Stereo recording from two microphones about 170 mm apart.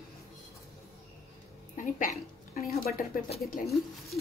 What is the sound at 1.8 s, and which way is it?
A woman's voice, 45° left (ahead or behind).